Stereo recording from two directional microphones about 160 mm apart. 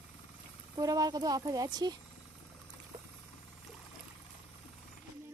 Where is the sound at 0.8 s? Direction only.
20° right (ahead or behind).